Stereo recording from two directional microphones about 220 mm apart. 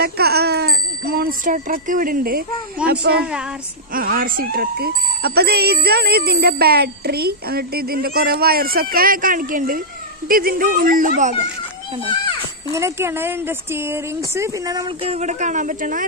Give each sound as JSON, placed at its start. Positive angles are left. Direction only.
{"t": 0.0, "sound": "speech", "side_deg": -45}
{"t": 12.1, "sound": "children playing", "side_deg": 20}
{"t": 12.7, "sound": "speech", "side_deg": -10}